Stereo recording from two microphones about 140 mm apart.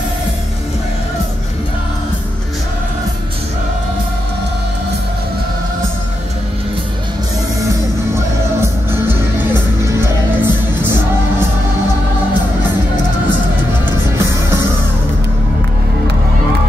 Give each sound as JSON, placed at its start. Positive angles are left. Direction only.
{"t": 9.9, "sound": "music", "side_deg": -15}